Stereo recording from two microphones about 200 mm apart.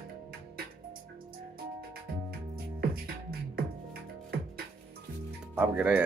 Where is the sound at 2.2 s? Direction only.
50° right (ahead or behind).